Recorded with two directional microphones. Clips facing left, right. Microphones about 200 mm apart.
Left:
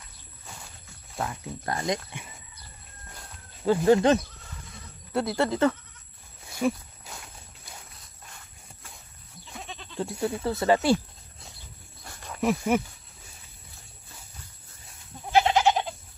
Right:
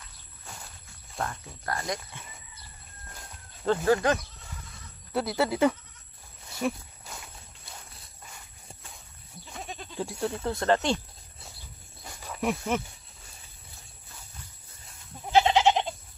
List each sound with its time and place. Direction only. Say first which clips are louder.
1.1 s speech: left 1 dB; 5° left (ahead or behind)
1.7 s speech: left 4 dB; 20° left (ahead or behind)
3.1 s a sound: left 1 dB; 5° left (ahead or behind)
3.9 s speech: left 5 dB; 25° left (ahead or behind)
5.1 s speech: left 1 dB; centre (ahead or behind)
6.4 s walk: left 4 dB; centre (ahead or behind)
9.9 s speech: left 2 dB; centre (ahead or behind)
12.0 s a sound: left 3 dB; 5° right (ahead or behind)
15.3 s goat: even; 20° right (ahead or behind)